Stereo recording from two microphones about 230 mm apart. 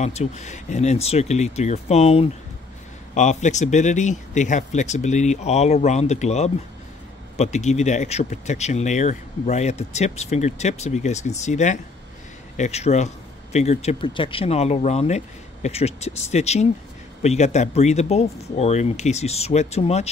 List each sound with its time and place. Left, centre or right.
0.0 s speech: left